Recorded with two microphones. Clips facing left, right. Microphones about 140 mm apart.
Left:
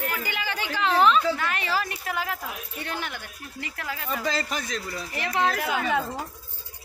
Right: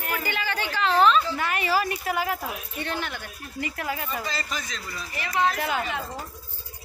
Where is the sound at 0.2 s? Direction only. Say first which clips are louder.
Right 2 dB; 15° left (ahead or behind).